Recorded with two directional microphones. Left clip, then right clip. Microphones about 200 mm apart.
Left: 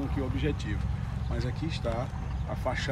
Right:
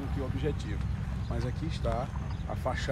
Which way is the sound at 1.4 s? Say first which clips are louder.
Left 3 dB; 20° right (ahead or behind).